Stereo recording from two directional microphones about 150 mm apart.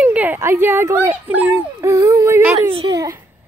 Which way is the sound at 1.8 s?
20° right (ahead or behind).